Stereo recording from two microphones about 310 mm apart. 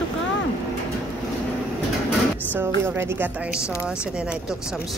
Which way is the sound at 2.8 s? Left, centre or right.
Centre.